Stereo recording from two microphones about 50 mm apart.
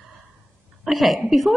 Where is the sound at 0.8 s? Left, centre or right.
Centre.